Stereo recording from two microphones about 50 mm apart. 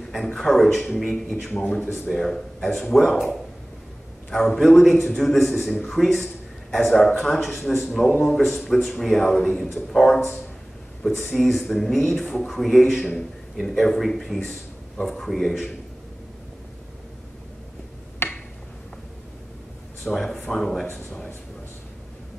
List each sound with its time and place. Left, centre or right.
0.2 s a man's voice: centre
4.3 s a man's voice: centre
7.1 s speech: centre
7.3 s a man's voice: centre
11.3 s a man's voice: centre
18.2 s a sound: left
20.1 s speech: centre
20.8 s speech: left